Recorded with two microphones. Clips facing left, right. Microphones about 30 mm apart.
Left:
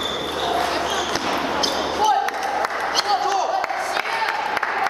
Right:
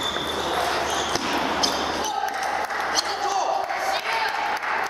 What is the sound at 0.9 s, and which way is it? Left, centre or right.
Basketball bounce, centre.